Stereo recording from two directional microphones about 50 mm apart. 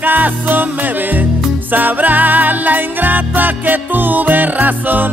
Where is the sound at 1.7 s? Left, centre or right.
Right.